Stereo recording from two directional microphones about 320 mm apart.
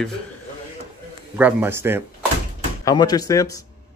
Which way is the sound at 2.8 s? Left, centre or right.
Centre.